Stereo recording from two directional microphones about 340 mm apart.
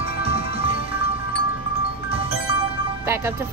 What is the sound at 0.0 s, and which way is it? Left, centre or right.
Music, centre.